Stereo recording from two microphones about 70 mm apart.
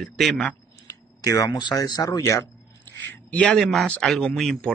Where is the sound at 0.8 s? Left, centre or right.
Left.